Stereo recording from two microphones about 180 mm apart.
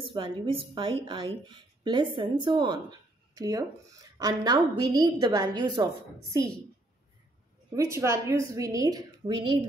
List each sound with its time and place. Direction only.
0.0 s speech: 25° right (ahead or behind)
7.7 s speech: 15° right (ahead or behind)